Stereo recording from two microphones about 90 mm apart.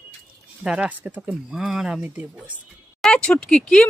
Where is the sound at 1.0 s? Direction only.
20° right (ahead or behind).